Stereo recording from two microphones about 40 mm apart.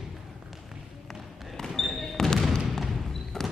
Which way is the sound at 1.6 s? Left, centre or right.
Centre.